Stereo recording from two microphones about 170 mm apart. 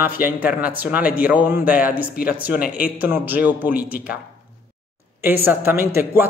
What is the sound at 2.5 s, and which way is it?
Speech, 60° left (ahead or behind).